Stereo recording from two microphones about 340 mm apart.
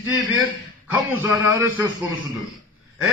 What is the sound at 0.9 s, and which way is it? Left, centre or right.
Speech, centre.